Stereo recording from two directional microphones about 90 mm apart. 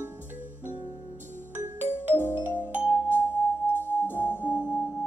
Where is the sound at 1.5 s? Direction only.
20° right (ahead or behind).